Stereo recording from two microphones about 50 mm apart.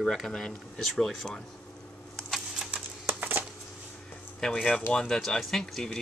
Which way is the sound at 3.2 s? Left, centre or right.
Right.